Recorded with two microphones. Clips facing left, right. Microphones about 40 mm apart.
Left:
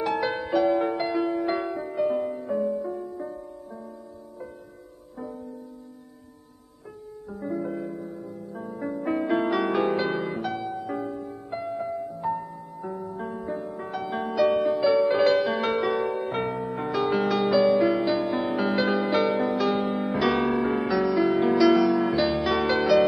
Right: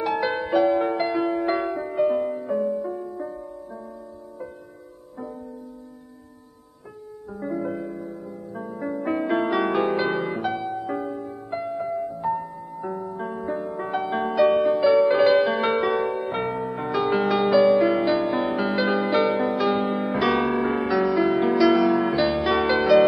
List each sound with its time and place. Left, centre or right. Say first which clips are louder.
0.0 s music: right 2 dB; centre
7.3 s music: right 2 dB; centre